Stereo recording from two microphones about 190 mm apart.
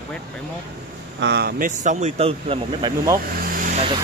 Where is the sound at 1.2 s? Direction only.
60° right (ahead or behind).